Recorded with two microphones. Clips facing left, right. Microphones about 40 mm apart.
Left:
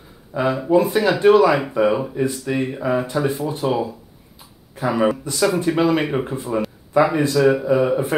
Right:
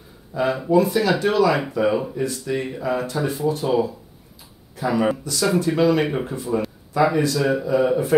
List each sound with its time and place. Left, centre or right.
0.3 s speech: left